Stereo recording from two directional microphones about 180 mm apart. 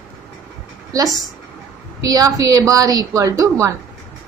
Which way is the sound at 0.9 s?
20° right (ahead or behind).